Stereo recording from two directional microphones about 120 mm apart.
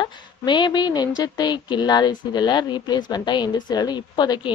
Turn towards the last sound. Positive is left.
turn(degrees=35)  # may be behind; listen again after turning